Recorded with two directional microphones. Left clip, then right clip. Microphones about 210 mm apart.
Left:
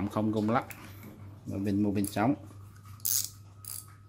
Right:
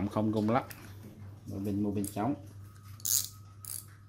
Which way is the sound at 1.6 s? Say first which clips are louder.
Left 4 dB; 20° left (ahead or behind).